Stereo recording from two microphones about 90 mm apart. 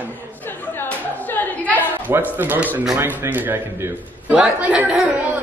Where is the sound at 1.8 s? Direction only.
20° right (ahead or behind).